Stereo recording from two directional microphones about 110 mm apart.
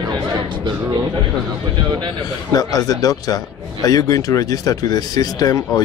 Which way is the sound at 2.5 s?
35° left (ahead or behind).